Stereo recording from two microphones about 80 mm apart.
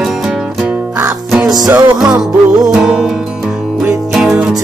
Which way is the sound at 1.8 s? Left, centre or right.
Right.